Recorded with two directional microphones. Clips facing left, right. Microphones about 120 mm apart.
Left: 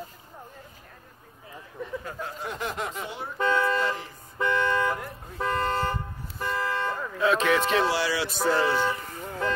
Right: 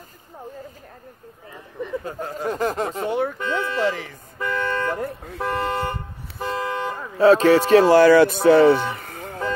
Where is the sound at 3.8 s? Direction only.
75° right (ahead or behind).